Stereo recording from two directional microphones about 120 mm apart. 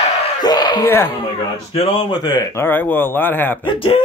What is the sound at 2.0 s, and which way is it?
Speech, 35° left (ahead or behind).